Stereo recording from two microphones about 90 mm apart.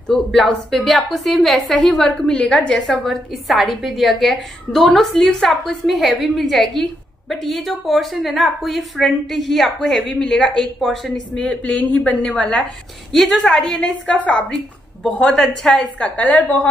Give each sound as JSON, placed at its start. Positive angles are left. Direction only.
{"t": 0.1, "sound": "a woman's voice", "side_deg": 5}
{"t": 11.4, "sound": "a woman's voice", "side_deg": 15}
{"t": 16.2, "sound": "a woman's voice", "side_deg": 20}